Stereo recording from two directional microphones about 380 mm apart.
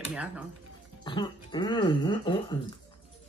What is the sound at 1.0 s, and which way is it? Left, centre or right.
Speech, centre.